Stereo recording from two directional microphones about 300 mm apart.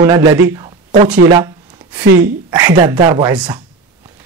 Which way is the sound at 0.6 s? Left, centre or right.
Centre.